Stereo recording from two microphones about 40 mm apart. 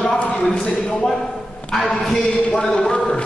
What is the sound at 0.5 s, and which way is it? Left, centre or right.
A man's voice, centre.